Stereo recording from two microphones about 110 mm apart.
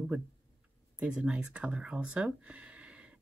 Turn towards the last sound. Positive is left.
turn(degrees=-10)  # may be behind; listen again after turning